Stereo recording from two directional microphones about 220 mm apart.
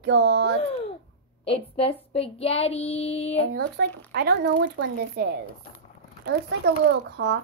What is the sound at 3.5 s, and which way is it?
Speech, 50° right (ahead or behind).